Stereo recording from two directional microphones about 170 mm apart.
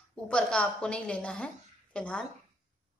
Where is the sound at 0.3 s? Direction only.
5° left (ahead or behind).